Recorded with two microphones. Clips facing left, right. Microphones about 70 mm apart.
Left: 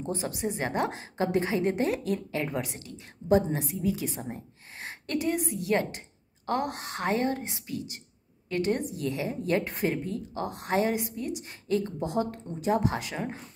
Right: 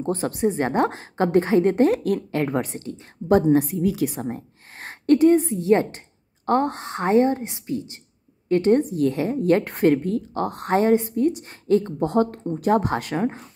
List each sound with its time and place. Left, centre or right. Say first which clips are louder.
0.0 s a woman's voice: right 9 dB; right
3.7 s a woman's voice: right 7 dB; right
4.2 s a woman's voice: right 8 dB; right
12.5 s a woman's voice: right 6 dB; right